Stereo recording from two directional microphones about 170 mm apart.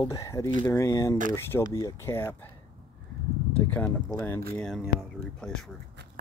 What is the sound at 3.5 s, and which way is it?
Speech, 10° left (ahead or behind).